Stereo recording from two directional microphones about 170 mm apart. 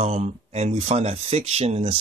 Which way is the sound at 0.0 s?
40° right (ahead or behind).